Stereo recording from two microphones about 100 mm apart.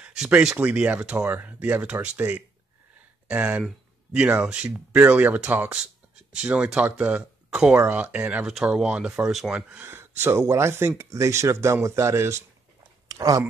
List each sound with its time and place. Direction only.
0.0 s speech: 10° right (ahead or behind); by 13.4 s 35° right (ahead or behind)